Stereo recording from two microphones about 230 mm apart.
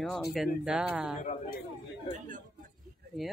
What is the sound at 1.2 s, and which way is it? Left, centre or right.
Speech, left.